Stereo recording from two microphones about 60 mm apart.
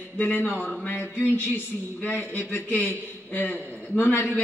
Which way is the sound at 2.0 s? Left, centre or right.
Left.